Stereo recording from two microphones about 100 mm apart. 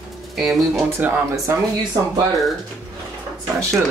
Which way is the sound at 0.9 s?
20° right (ahead or behind).